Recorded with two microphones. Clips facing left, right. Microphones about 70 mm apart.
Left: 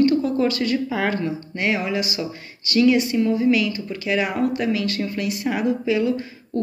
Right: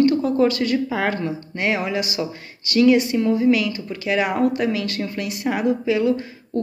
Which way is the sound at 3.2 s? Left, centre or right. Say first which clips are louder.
Right 1 dB; right.